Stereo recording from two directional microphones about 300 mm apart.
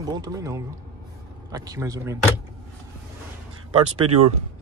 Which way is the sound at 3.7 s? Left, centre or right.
Right.